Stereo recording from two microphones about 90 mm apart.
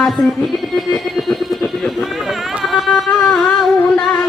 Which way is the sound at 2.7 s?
5° left (ahead or behind).